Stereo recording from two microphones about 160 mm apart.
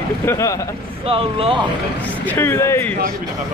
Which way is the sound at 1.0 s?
35° right (ahead or behind).